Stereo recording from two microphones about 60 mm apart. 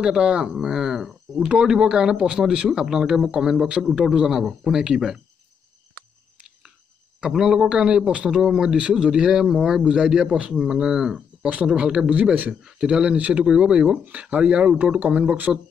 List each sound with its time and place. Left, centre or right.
0.0 s speech: centre
7.2 s speech: centre; by 15.6 s right